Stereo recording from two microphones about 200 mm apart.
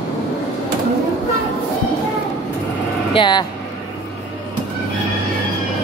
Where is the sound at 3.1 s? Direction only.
25° left (ahead or behind).